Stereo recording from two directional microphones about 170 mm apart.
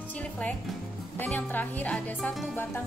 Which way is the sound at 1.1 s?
10° left (ahead or behind).